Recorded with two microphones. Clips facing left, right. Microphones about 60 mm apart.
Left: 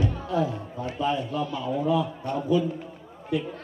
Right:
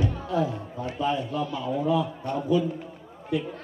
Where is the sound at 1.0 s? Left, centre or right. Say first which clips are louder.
Even; centre.